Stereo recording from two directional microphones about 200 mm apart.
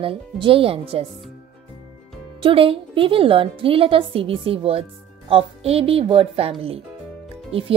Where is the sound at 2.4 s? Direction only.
25° right (ahead or behind).